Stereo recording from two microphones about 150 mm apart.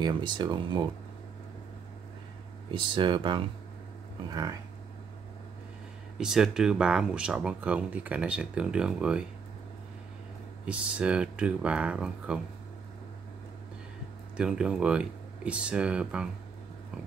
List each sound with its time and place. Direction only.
0.0 s speech: 30° right (ahead or behind)
2.7 s speech: 35° right (ahead or behind)
6.1 s speech: 5° right (ahead or behind)
10.6 s speech: 5° right (ahead or behind)
14.3 s speech: 5° right (ahead or behind)